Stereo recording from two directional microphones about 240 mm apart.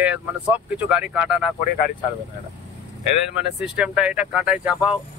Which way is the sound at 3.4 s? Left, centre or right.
Centre.